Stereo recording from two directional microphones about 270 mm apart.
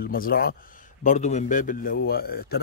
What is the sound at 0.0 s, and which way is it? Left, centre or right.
Speech, left.